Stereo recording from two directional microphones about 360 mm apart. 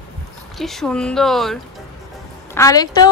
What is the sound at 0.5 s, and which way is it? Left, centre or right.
A woman's voice, centre.